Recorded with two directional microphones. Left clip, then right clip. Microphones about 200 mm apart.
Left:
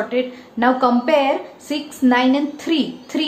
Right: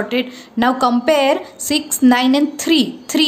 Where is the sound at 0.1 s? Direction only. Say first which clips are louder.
Right 1 dB; 45° right (ahead or behind).